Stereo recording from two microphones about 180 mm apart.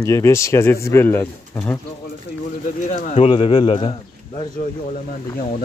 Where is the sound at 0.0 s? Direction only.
15° left (ahead or behind).